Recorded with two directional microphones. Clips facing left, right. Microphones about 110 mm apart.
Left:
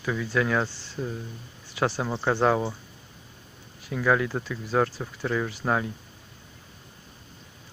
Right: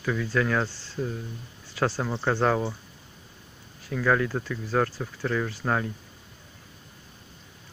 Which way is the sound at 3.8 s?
15° left (ahead or behind).